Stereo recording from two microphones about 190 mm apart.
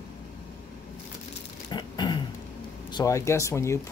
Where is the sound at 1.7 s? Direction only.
25° left (ahead or behind).